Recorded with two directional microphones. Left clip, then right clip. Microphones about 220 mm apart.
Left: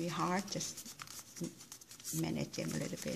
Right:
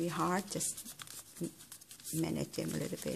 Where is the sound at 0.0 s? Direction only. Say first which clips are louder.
Right 2 dB; 30° right (ahead or behind).